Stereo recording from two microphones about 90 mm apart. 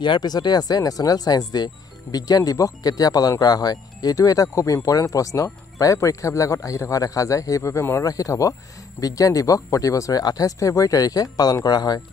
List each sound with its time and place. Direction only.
0.0 s speech: 55° left (ahead or behind)